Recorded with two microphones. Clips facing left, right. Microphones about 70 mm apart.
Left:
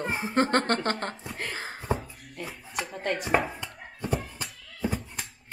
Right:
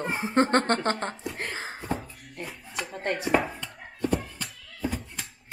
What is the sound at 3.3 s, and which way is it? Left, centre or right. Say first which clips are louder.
Chopping: right 1 dB; centre.